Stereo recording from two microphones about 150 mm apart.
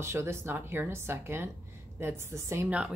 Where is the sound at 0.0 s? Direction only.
20° right (ahead or behind).